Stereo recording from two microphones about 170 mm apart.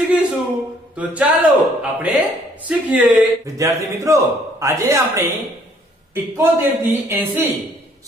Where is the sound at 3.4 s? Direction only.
15° right (ahead or behind).